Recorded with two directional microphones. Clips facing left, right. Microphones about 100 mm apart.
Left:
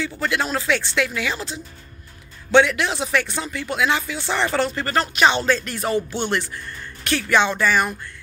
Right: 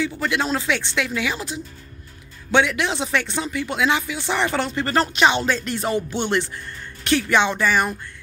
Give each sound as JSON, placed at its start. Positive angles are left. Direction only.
{"t": 0.0, "sound": "speech", "side_deg": -15}